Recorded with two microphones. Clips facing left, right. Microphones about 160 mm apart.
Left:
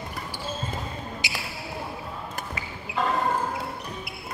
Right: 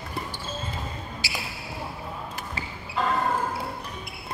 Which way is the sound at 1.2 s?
20° left (ahead or behind).